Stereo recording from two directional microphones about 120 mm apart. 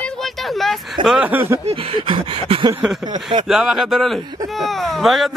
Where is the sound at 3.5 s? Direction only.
5° right (ahead or behind).